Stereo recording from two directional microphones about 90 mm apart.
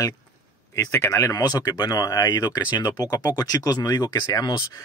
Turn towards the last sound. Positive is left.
turn(degrees=45)  # may be behind; listen again after turning